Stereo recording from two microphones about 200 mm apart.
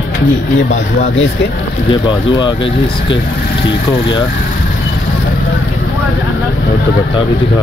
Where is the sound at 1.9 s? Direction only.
25° left (ahead or behind).